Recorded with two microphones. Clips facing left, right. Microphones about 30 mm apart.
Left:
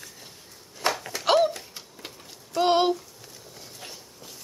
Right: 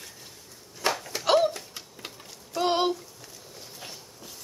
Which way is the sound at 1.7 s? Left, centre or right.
Centre.